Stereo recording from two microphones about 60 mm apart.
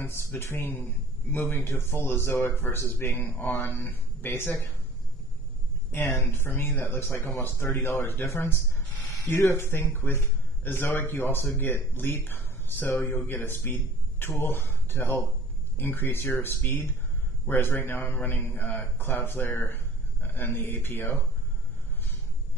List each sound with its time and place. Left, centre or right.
0.4 s a man's voice: left
5.9 s a man's voice: left